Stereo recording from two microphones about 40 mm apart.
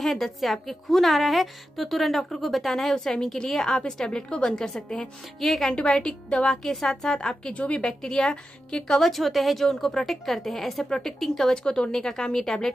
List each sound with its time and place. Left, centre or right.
0.0 s a woman's voice: centre
5.4 s a woman's voice: centre
5.7 s a woman's voice: centre
6.6 s a woman's voice: centre
7.5 s a woman's voice: left
7.8 s a woman's voice: centre
9.1 s a woman's voice: centre
11.5 s a woman's voice: left